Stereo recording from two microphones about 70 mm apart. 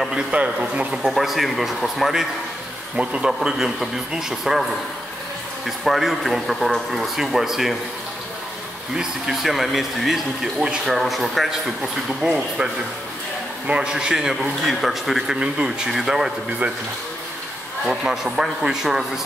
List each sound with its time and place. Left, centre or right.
0.1 s a man's voice: centre
1.0 s speech: centre
3.0 s a man's voice: centre
3.3 s speech: centre
5.9 s speech: centre
8.9 s speech: centre
13.7 s a man's voice: centre
17.8 s a man's voice: centre